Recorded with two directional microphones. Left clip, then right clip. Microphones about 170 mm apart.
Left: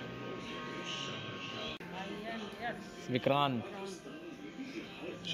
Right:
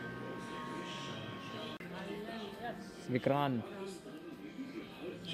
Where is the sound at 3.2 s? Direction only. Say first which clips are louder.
Left 3 dB; 20° right (ahead or behind).